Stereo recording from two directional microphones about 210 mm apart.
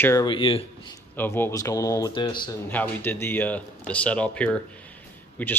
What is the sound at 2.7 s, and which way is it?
Speech, 10° left (ahead or behind).